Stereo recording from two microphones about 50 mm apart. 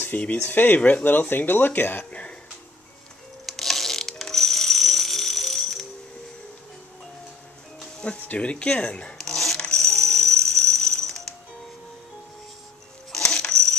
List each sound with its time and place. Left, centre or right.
0.1 s speech: left
1.3 s speech: left
3.4 s ratchet: centre
8.0 s speech: left
9.2 s a sound: centre
9.8 s music: centre
13.1 s coin: centre